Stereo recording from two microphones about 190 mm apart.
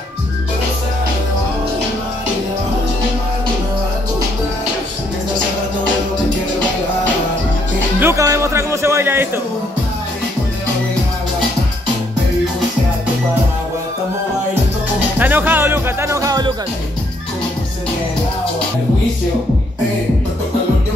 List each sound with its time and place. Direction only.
8.0 s music: 15° right (ahead or behind)
15.1 s music: 10° right (ahead or behind)